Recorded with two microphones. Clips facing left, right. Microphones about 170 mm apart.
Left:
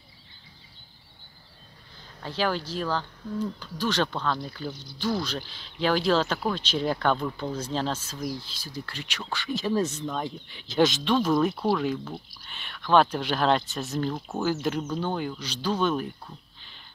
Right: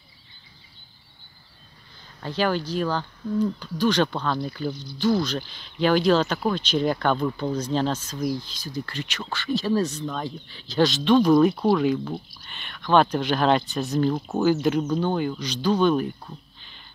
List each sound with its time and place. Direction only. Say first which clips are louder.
2.2 s speech: right 4 dB; centre (ahead or behind)
4.1 s speech: right 3 dB; 10° right (ahead or behind)
5.0 s speech: right 6 dB; 5° left (ahead or behind)
11.1 s speech: right 6 dB; centre (ahead or behind)
11.4 s speech: right 5 dB; 15° right (ahead or behind)
11.7 s speech: right 5 dB; centre (ahead or behind)
14.0 s speech: right 6 dB; 15° right (ahead or behind)
14.4 s speech: right 6 dB; centre (ahead or behind)